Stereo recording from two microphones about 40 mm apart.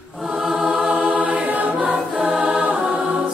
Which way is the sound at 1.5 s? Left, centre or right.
Right.